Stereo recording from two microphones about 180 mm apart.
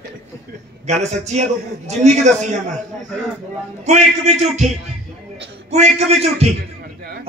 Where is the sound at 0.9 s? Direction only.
40° right (ahead or behind).